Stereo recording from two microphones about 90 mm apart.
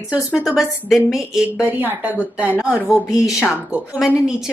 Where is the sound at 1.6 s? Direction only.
20° right (ahead or behind).